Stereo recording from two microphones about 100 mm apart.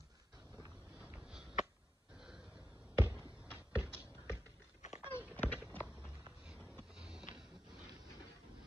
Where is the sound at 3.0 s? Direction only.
15° right (ahead or behind).